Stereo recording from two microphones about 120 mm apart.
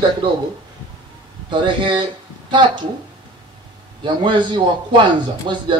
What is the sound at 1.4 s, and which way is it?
A man's voice, 40° right (ahead or behind).